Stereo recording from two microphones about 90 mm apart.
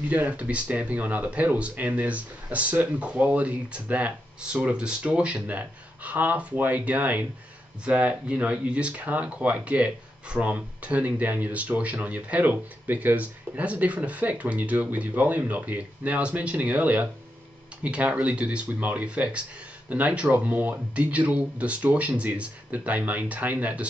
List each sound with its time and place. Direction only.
0.1 s speech: 15° right (ahead or behind)